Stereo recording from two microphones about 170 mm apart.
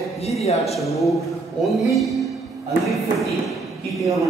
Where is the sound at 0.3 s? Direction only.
40° left (ahead or behind).